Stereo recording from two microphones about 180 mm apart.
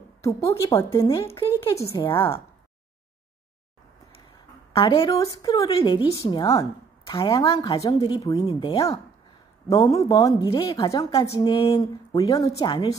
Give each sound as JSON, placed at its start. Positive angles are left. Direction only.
{"t": 0.2, "sound": "a woman's voice", "side_deg": 15}
{"t": 1.0, "sound": "a woman's voice", "side_deg": 30}
{"t": 1.8, "sound": "a woman's voice", "side_deg": 15}
{"t": 4.7, "sound": "a woman's voice", "side_deg": 30}
{"t": 5.1, "sound": "a woman's voice", "side_deg": 20}